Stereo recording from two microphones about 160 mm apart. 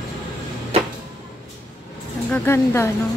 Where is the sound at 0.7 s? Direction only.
40° right (ahead or behind).